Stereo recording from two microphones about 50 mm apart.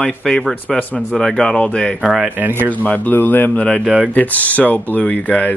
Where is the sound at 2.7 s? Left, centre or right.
Left.